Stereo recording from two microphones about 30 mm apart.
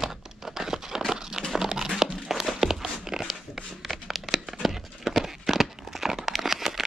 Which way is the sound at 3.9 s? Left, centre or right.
Centre.